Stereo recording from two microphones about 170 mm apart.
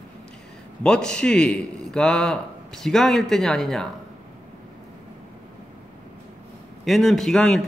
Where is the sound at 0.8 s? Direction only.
5° left (ahead or behind).